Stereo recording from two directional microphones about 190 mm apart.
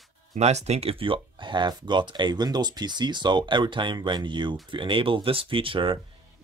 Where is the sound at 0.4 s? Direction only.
35° right (ahead or behind).